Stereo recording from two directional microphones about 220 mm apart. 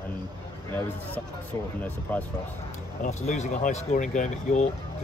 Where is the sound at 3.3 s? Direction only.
30° left (ahead or behind).